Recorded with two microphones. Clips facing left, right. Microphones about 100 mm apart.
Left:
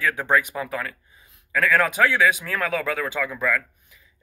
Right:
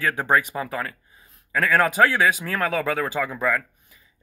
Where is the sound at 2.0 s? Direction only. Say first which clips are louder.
Right 1 dB; 10° right (ahead or behind).